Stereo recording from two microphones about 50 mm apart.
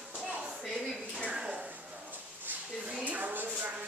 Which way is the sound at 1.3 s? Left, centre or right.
Centre.